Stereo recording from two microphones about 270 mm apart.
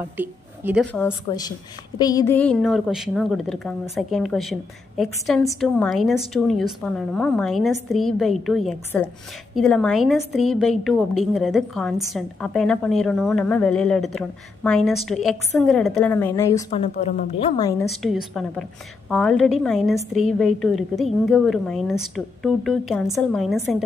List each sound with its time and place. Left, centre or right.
0.2 s speech: centre
0.9 s a woman's voice: centre
17.0 s a woman's voice: left
18.0 s a woman's voice: centre